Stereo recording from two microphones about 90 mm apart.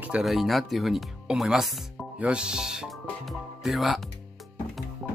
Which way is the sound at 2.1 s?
15° right (ahead or behind).